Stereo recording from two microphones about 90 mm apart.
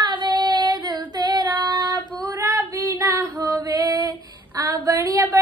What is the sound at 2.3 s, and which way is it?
Female singing, 25° right (ahead or behind).